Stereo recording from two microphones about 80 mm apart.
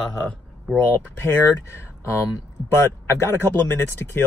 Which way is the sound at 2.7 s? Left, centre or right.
Left.